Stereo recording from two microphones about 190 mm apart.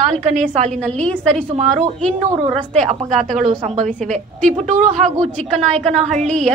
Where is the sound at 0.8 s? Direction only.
5° left (ahead or behind).